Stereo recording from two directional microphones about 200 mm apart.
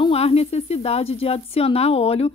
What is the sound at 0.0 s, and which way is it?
Speech, 30° left (ahead or behind).